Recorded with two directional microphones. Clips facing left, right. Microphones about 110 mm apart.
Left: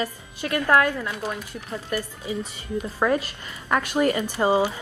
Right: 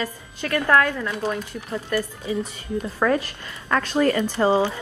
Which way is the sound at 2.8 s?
10° left (ahead or behind).